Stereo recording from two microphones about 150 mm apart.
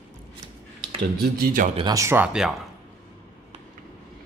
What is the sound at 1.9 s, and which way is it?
Speech, 15° right (ahead or behind).